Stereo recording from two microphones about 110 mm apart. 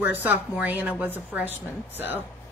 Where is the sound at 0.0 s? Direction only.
15° right (ahead or behind).